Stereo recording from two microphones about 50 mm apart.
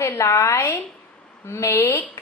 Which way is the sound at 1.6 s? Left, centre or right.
Left.